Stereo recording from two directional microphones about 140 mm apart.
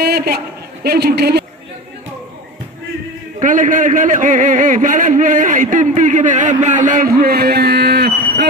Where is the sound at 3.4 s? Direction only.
70° right (ahead or behind).